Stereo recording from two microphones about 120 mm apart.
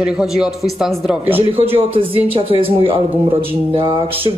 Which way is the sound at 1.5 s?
55° right (ahead or behind).